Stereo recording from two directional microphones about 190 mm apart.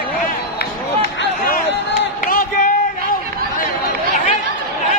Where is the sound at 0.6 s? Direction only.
50° left (ahead or behind).